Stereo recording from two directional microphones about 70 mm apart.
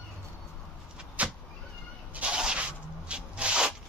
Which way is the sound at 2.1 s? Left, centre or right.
Centre.